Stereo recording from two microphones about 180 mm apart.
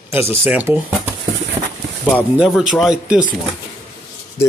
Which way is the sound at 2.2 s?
5° right (ahead or behind).